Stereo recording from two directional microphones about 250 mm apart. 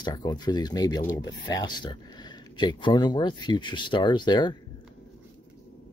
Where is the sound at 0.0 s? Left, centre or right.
Centre.